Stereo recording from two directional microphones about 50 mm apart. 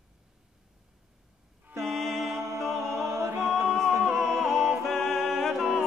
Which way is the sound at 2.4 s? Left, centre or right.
Right.